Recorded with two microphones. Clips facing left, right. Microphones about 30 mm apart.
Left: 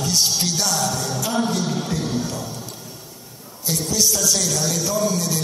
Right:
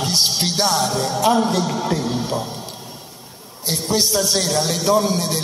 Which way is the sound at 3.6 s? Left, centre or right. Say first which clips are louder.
Right 1 dB; right.